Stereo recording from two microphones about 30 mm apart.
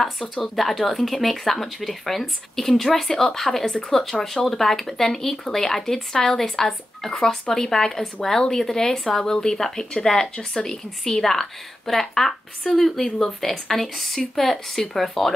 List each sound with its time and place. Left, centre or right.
0.4 s speech: centre